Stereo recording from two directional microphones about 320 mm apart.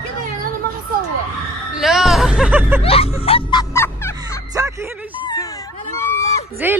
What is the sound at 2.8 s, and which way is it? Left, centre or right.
Music, centre.